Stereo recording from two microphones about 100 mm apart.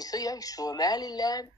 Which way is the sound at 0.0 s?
40° left (ahead or behind).